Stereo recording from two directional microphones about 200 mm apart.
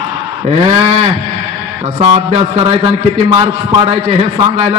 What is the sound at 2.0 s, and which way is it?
A man's voice, 30° right (ahead or behind).